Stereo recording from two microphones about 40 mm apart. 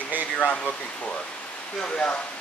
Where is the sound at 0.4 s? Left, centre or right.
Left.